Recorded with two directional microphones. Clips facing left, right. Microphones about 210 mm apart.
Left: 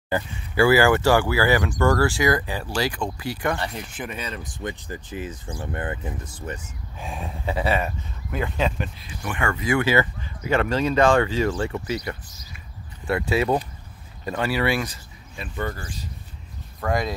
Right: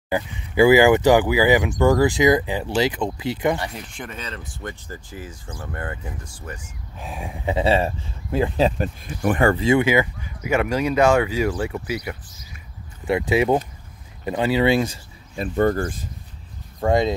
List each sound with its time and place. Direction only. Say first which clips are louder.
0.1 s speech: right 2 dB; 20° right (ahead or behind)
3.7 s speech: left 2 dB; 5° left (ahead or behind); by 6.6 s 20° left (ahead or behind)
7.0 s speech: right 1 dB; 5° right (ahead or behind); by 9.8 s 25° right (ahead or behind)
9.8 s speech: right 2 dB; 10° right (ahead or behind)
15.3 s speech: right 11 dB; 40° right (ahead or behind)
16.8 s speech: right 6 dB; 25° right (ahead or behind)